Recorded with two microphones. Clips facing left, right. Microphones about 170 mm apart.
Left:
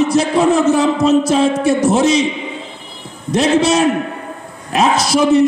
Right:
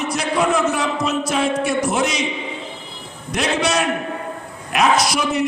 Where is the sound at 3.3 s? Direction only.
25° left (ahead or behind).